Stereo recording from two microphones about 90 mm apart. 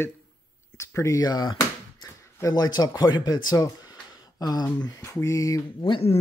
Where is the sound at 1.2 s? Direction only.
50° left (ahead or behind).